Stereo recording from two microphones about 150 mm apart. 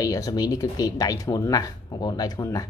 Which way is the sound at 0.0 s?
25° left (ahead or behind).